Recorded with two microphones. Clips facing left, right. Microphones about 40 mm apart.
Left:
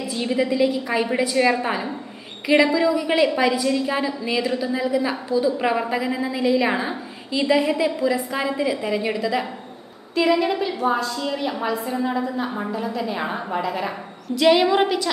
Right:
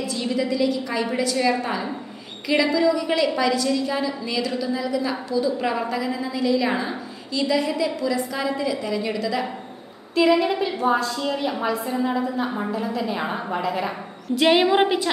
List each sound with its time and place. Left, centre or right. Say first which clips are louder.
0.0 s a woman's voice: left 2 dB; left
10.1 s a woman's voice: right 1 dB; centre
14.4 s a woman's voice: left 1 dB; centre